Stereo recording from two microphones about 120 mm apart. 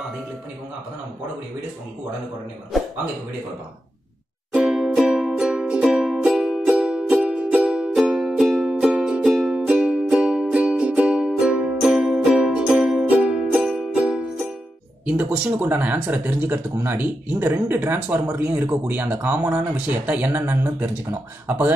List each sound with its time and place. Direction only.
4.6 s music: 5° right (ahead or behind)
15.0 s speech: 10° right (ahead or behind)